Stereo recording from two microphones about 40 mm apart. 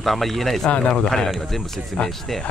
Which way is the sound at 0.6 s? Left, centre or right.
Left.